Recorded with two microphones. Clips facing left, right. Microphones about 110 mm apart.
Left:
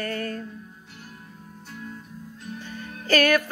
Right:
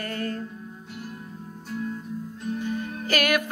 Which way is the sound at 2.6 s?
15° right (ahead or behind).